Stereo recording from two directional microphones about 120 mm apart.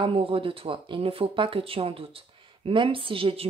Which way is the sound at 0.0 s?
50° right (ahead or behind).